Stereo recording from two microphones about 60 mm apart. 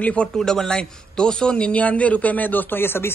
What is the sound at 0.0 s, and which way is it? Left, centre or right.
A man's voice, centre.